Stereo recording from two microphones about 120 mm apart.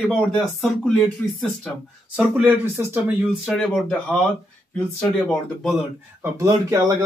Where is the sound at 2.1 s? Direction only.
5° right (ahead or behind).